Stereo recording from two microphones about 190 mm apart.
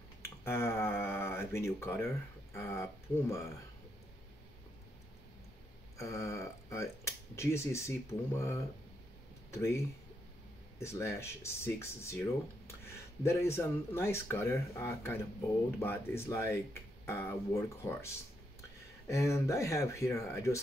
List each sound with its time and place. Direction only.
0.5 s a sound: 15° left (ahead or behind)
1.5 s speech: 15° left (ahead or behind)
5.9 s speech: 15° left (ahead or behind)
10.8 s speech: 15° left (ahead or behind)